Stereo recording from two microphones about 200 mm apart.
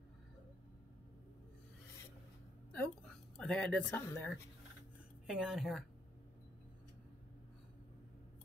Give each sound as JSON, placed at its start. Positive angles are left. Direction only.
{"t": 2.7, "sound": "speech", "side_deg": 5}
{"t": 5.2, "sound": "a woman's voice", "side_deg": 0}